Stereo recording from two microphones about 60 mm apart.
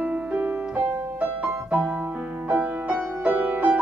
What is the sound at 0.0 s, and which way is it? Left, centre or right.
Piano, right.